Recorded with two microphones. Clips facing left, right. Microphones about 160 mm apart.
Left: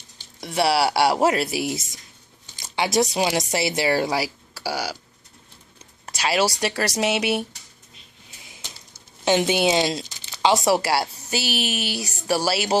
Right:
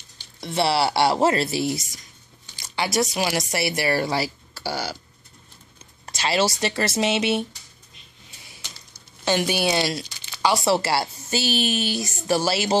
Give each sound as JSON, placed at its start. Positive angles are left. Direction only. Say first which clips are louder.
{"t": 0.4, "sound": "speech", "louder": "left 1 dB", "side_deg": 10}
{"t": 6.0, "sound": "speech", "louder": "left 1 dB", "side_deg": 5}
{"t": 9.2, "sound": "speech", "louder": "left 3 dB", "side_deg": 20}